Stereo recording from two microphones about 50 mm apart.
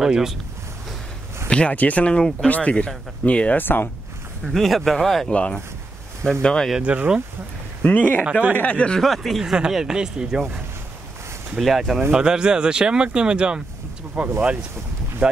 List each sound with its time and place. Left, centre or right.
0.0 s speech: centre
1.5 s speech: left
3.5 s speech: left
4.5 s speech: centre
5.3 s speech: left
6.8 s speech: right
7.8 s speech: left
8.3 s speech: right
8.7 s speech: centre
9.0 s speech: centre
11.5 s speech: centre
12.1 s speech: centre